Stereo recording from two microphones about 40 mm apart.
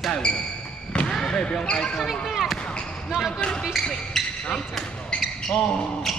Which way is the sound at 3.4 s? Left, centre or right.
Left.